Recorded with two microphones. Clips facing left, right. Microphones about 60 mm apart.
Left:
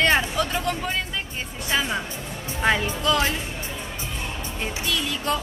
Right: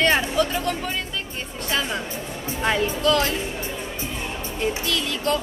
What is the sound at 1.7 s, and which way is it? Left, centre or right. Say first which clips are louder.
Speech: left 1 dB; centre.